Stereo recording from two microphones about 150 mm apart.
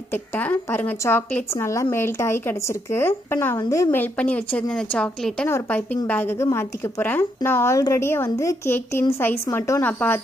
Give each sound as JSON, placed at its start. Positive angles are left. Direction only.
{"t": 0.1, "sound": "a woman's voice", "side_deg": 10}